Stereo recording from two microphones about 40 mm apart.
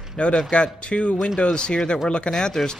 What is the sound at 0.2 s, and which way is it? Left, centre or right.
Speech, left.